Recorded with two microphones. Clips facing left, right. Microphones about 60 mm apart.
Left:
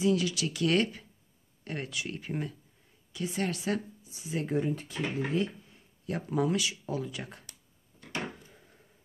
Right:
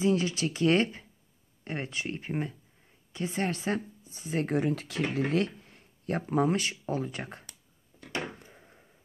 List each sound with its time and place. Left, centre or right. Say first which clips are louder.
0.0 s speech: right 1 dB; right
6.0 s speech: right 3 dB; right
8.5 s a sound: right 3 dB; right